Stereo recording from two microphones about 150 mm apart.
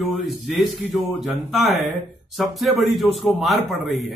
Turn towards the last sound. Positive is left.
turn(degrees=0)  # may be behind; listen again after turning